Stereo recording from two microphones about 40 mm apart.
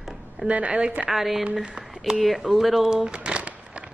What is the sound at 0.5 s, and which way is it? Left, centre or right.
Speech, right.